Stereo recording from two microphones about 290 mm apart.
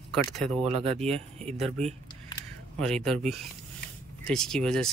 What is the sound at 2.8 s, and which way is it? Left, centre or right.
Speech, centre.